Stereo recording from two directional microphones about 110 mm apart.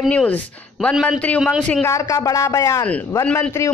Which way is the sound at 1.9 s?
30° left (ahead or behind).